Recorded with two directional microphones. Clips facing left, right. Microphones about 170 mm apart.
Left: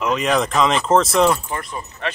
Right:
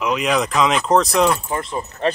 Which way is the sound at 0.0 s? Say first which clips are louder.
Even; centre (ahead or behind).